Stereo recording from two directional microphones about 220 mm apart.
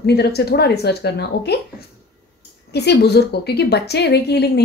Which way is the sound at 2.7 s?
50° left (ahead or behind).